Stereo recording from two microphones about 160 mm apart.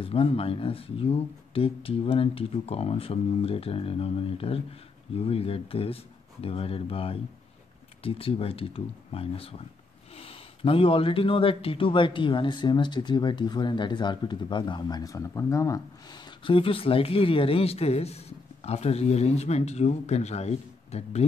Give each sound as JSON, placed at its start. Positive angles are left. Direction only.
{"t": 0.0, "sound": "speech", "side_deg": 35}
{"t": 16.4, "sound": "speech", "side_deg": 35}